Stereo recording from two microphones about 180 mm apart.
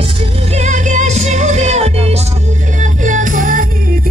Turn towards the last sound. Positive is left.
turn(degrees=-50)  # may be behind; listen again after turning